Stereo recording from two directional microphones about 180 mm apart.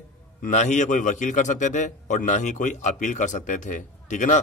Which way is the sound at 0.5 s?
40° left (ahead or behind).